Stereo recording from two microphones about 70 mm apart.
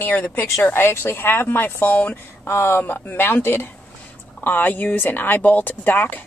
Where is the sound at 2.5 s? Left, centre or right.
Left.